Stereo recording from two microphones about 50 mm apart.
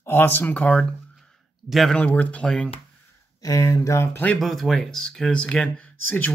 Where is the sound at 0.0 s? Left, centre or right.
Left.